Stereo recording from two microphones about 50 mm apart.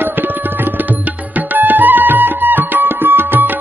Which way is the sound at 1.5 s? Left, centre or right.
Right.